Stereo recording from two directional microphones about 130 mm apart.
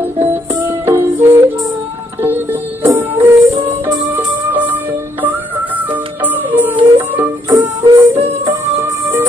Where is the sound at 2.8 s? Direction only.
20° right (ahead or behind).